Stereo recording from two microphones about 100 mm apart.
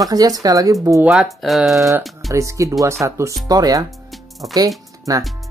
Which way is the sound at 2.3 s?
30° right (ahead or behind).